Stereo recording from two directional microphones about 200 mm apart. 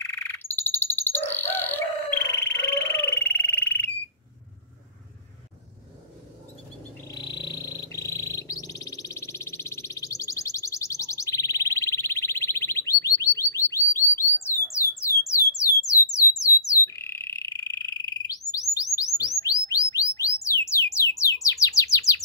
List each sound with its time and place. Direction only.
0.0 s frog: 10° left (ahead or behind)
7.2 s bird: 20° left (ahead or behind)
20.4 s music: 15° left (ahead or behind)